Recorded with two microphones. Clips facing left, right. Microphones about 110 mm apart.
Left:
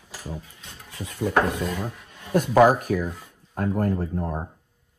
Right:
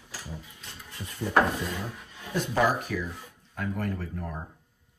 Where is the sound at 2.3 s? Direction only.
50° left (ahead or behind).